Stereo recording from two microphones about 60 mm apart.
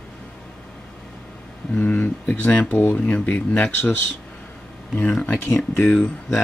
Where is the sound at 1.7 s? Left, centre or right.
Left.